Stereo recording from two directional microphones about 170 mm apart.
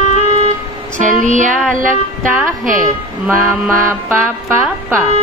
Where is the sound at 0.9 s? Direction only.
45° right (ahead or behind).